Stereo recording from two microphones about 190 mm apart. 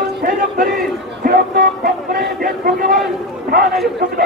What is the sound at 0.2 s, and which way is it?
Speech, 50° right (ahead or behind).